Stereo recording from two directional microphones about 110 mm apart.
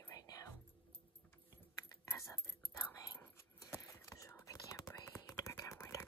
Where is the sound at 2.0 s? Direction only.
20° left (ahead or behind).